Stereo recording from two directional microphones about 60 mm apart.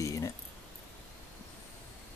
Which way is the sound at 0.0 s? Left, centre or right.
Left.